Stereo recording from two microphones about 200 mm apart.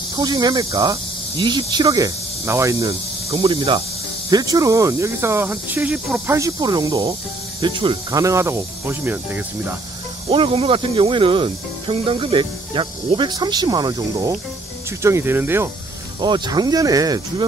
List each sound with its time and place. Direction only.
0.2 s speech: 20° right (ahead or behind)
3.4 s speech: 25° right (ahead or behind); by 6.3 s 5° right (ahead or behind)
6.3 s speech: 15° right (ahead or behind)
10.3 s speech: 25° right (ahead or behind); by 15.7 s 10° right (ahead or behind)
16.2 s speech: 20° right (ahead or behind)